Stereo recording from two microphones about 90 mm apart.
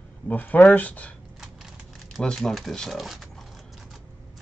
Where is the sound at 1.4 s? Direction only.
5° right (ahead or behind).